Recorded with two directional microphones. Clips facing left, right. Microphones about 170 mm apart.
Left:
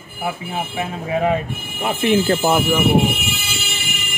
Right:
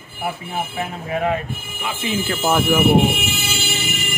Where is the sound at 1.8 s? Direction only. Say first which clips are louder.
Left 7 dB; 60° left (ahead or behind).